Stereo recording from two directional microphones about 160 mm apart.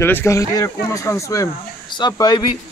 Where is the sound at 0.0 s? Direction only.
15° left (ahead or behind).